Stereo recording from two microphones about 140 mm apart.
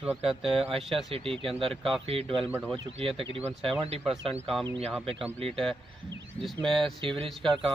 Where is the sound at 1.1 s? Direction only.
40° right (ahead or behind).